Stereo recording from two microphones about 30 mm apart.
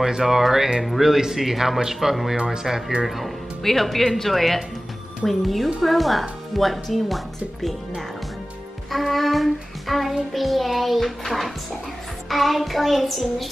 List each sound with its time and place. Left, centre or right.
0.2 s a man's voice: centre
2.3 s a man's voice: right
3.6 s a child's voice: centre
8.9 s music: centre
10.3 s a child's voice: centre